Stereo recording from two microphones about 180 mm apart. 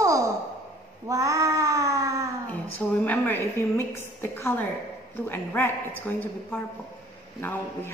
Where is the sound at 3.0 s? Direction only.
10° left (ahead or behind).